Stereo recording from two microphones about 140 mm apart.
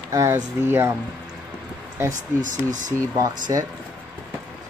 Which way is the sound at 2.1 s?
65° right (ahead or behind).